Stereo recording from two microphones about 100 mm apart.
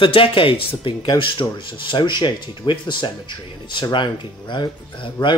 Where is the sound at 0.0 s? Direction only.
60° left (ahead or behind).